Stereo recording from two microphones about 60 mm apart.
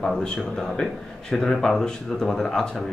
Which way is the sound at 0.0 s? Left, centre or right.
Centre.